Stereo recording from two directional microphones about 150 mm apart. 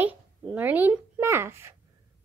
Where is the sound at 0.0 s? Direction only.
10° right (ahead or behind).